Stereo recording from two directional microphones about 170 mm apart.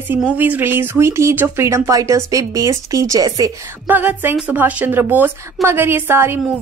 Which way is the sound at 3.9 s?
10° right (ahead or behind).